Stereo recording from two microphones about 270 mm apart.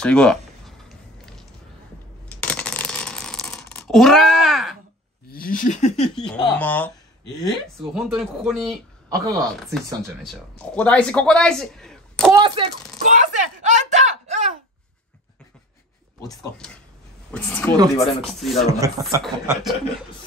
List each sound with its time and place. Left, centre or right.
0.0 s a sound: centre
2.2 s coin: centre
5.3 s speech: left
6.1 s speech: centre
7.8 s speech: centre
9.1 s a man's voice: centre
10.6 s speech: centre
12.3 s a sound: centre
17.3 s speech: centre
19.0 s a man's voice: centre